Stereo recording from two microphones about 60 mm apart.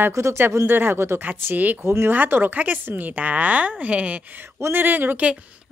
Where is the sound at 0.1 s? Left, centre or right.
Right.